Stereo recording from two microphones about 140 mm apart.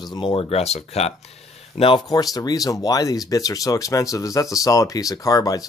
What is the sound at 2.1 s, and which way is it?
Speech, 30° left (ahead or behind).